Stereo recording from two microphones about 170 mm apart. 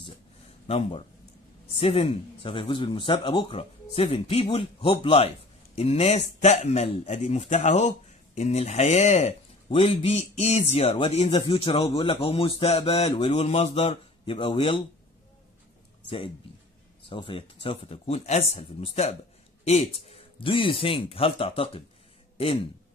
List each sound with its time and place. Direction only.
0.7 s a man's voice: 35° left (ahead or behind)
17.0 s speech: 30° left (ahead or behind)